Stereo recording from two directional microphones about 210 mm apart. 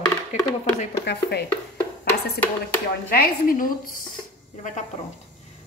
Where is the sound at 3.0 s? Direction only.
45° left (ahead or behind).